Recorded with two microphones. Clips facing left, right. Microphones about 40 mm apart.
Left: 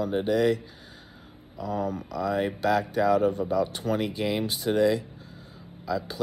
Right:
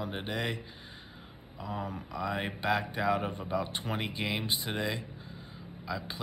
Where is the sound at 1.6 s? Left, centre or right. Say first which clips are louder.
Left 8 dB; right.